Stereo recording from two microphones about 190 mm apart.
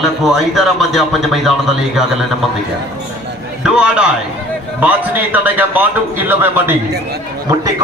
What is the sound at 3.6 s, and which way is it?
A man's voice, 5° right (ahead or behind).